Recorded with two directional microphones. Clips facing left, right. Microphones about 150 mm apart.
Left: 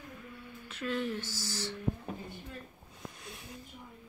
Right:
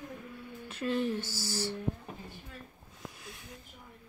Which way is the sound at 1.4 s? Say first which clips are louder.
Right 4 dB; 5° right (ahead or behind).